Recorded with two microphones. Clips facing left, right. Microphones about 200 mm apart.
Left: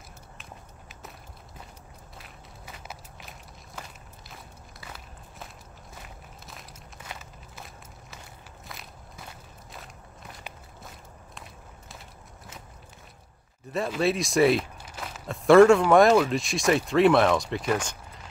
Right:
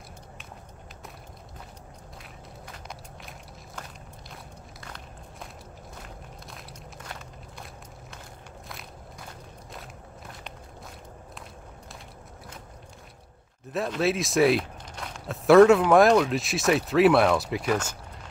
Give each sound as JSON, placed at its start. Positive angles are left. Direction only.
{"t": 2.6, "sound": "walk", "side_deg": 5}
{"t": 13.7, "sound": "speech", "side_deg": 0}